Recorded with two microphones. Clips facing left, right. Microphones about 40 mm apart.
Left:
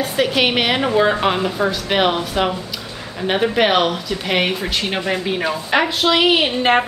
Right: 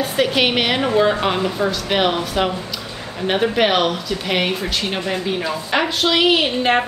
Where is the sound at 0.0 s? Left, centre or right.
Centre.